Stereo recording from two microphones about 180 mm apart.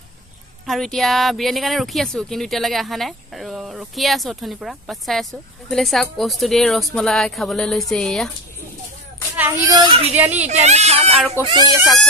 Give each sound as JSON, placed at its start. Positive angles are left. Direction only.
{"t": 0.7, "sound": "speech", "side_deg": 0}
{"t": 9.4, "sound": "a child's voice", "side_deg": -20}
{"t": 10.1, "sound": "a child's voice", "side_deg": -10}
{"t": 10.4, "sound": "speech", "side_deg": -40}
{"t": 11.4, "sound": "speech", "side_deg": 15}